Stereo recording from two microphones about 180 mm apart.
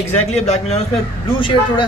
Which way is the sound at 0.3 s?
35° left (ahead or behind).